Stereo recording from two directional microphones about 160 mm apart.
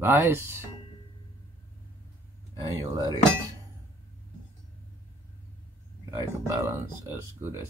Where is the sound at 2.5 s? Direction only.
25° right (ahead or behind).